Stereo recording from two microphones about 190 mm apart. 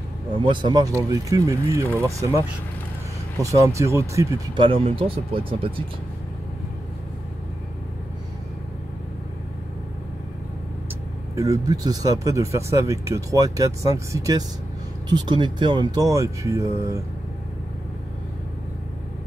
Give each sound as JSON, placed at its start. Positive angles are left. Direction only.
{"t": 0.5, "sound": "speech", "side_deg": -25}
{"t": 3.4, "sound": "speech", "side_deg": -15}
{"t": 4.6, "sound": "speech", "side_deg": -30}
{"t": 11.3, "sound": "speech", "side_deg": -20}